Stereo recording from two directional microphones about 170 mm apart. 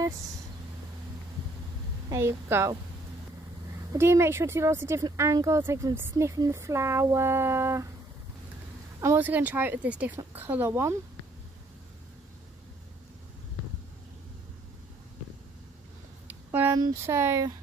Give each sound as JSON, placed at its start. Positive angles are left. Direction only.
{"t": 2.0, "sound": "speech", "side_deg": -15}
{"t": 4.0, "sound": "speech", "side_deg": -15}
{"t": 9.0, "sound": "speech", "side_deg": -10}
{"t": 16.3, "sound": "speech", "side_deg": -10}